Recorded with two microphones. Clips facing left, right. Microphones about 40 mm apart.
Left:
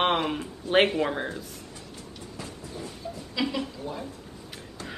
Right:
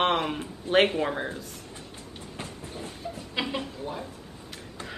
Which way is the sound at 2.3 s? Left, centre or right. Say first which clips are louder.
Even; right.